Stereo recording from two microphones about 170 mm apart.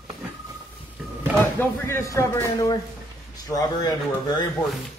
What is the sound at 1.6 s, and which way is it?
Speech, 15° left (ahead or behind).